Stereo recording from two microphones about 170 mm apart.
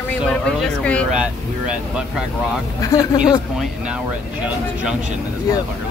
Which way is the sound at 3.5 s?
5° right (ahead or behind).